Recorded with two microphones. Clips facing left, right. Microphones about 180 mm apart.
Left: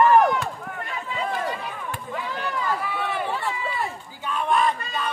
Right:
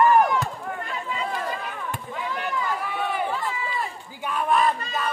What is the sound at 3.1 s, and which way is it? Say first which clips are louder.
Run: right 1 dB; 70° left (ahead or behind).